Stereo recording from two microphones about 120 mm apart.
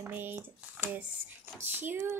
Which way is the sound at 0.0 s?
15° right (ahead or behind).